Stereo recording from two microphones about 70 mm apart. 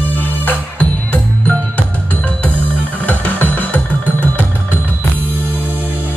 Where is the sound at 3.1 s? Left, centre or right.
Left.